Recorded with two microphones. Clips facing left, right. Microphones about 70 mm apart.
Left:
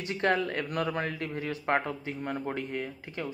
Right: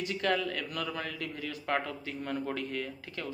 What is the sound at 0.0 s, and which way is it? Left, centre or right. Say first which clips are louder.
A man's voice: left 3 dB; left.